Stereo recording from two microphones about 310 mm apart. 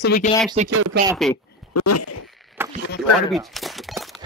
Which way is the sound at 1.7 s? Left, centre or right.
Left.